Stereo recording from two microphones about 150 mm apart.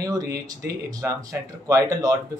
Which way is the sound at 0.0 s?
25° right (ahead or behind).